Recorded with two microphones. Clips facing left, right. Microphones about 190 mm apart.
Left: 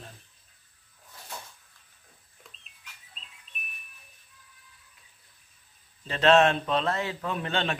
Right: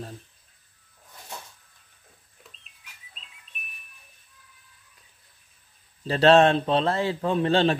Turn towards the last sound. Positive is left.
turn(degrees=-35)  # may be behind; listen again after turning